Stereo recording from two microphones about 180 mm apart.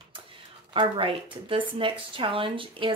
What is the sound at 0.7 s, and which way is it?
Speech, 30° right (ahead or behind).